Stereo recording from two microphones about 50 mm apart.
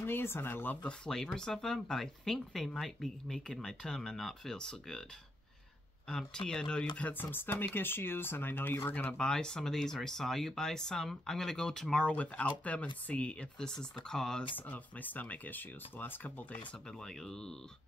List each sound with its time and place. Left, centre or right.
0.0 s speech: left
0.8 s speech: centre
6.0 s speech: centre
7.2 s speech: left
9.1 s speech: centre
12.0 s speech: left
13.6 s speech: centre
14.7 s speech: left
17.0 s speech: centre